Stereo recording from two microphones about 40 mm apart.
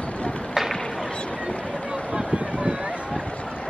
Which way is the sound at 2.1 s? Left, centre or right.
Right.